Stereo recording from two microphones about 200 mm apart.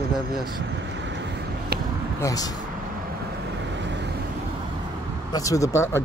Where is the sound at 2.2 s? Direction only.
20° left (ahead or behind).